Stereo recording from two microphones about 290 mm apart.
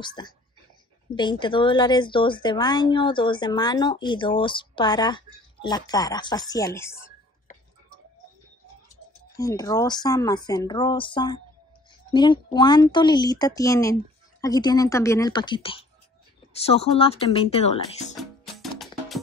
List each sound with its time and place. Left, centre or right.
0.0 s speech: centre
9.4 s speech: centre
18.4 s music: centre